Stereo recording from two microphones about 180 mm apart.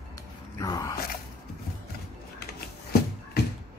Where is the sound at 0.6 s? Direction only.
20° left (ahead or behind).